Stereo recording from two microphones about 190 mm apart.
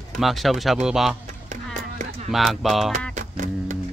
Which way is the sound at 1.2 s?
40° right (ahead or behind).